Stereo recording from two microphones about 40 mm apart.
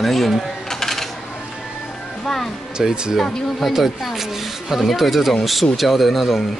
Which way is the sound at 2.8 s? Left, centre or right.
Centre.